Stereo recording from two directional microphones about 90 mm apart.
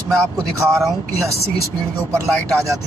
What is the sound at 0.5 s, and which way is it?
Speech, 35° right (ahead or behind).